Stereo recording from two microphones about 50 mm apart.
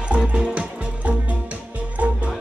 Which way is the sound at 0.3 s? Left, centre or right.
Right.